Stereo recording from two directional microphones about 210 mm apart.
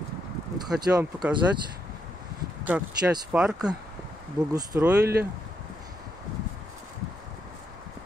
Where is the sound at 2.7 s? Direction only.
5° right (ahead or behind).